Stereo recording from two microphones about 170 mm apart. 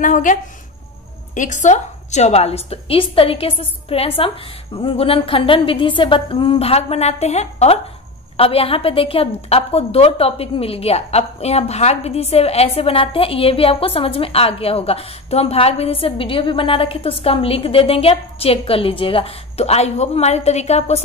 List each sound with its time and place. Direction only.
0.0 s a woman's voice: 50° left (ahead or behind)